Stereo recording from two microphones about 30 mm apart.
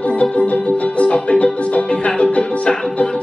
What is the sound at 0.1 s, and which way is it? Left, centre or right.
Music, left.